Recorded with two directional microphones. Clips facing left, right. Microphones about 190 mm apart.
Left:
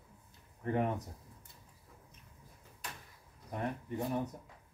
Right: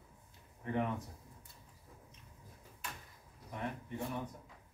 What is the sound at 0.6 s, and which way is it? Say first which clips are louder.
Speech: left 3 dB; 40° left (ahead or behind).